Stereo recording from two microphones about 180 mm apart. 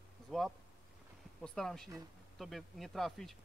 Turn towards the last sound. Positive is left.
turn(degrees=0)  # may be behind; listen again after turning